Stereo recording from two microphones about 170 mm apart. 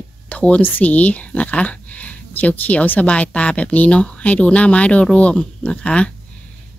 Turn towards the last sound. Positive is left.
turn(degrees=5)  # may be behind; listen again after turning